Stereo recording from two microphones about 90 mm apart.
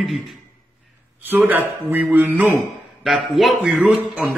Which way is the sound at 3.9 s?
5° right (ahead or behind).